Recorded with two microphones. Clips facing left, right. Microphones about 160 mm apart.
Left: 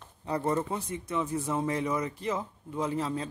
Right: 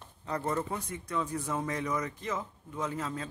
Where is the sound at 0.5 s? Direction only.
25° left (ahead or behind).